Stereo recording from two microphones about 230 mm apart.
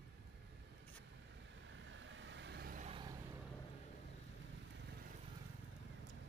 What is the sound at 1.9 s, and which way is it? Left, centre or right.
Vehicle, right.